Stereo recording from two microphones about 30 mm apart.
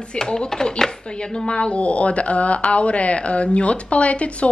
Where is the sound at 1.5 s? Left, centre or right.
Left.